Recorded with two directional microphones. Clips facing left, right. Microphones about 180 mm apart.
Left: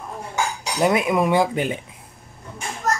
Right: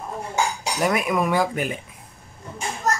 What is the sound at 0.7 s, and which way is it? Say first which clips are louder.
Speech: left 4 dB; 25° left (ahead or behind).